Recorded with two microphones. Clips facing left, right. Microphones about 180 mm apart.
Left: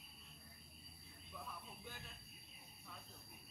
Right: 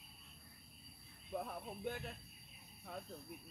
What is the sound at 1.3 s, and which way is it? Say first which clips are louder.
Speech: right 10 dB; 55° right (ahead or behind).